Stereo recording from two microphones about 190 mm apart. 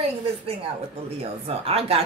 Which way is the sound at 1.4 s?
30° right (ahead or behind).